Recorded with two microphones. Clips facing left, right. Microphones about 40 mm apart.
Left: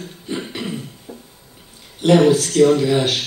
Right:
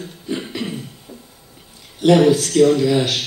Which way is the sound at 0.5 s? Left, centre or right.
Left.